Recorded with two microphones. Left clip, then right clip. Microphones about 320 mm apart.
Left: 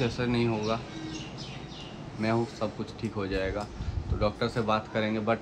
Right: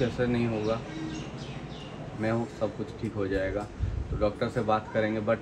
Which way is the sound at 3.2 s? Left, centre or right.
Centre.